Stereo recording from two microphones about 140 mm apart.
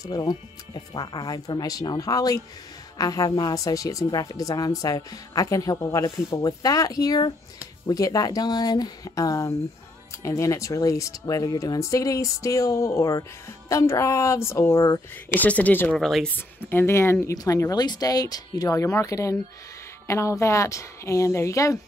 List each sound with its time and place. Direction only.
0.0 s speech: 25° left (ahead or behind); by 16.3 s 5° left (ahead or behind)
16.3 s speech: 15° left (ahead or behind)